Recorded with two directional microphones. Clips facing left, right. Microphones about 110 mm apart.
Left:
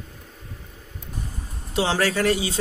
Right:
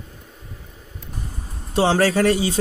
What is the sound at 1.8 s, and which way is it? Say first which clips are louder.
Speech: right 5 dB; 40° right (ahead or behind).